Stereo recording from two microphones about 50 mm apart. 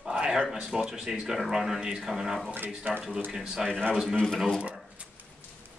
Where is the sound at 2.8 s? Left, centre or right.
Right.